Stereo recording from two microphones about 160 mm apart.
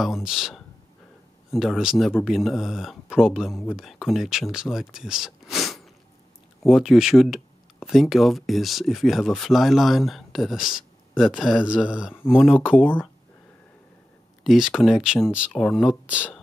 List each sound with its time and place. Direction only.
0.0 s speech: centre (ahead or behind)
14.4 s speech: centre (ahead or behind)